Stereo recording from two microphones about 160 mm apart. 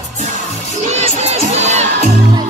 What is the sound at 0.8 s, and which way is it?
Crowd, 45° right (ahead or behind).